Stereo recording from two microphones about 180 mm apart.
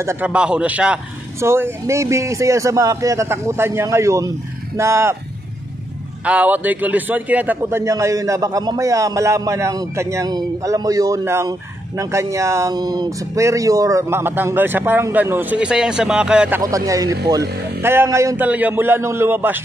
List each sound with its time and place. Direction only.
0.0 s a man's voice: 10° right (ahead or behind)
6.2 s a man's voice: 5° right (ahead or behind)